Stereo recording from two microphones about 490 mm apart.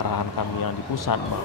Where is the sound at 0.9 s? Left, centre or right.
Left.